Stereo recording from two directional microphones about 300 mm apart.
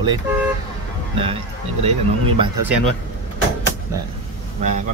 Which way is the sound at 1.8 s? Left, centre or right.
Centre.